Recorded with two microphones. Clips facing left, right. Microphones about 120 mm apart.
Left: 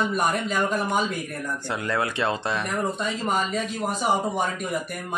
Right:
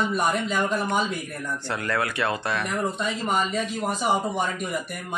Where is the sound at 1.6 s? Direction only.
15° left (ahead or behind).